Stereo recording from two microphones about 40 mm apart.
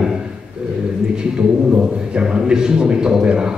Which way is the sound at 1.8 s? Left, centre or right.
Right.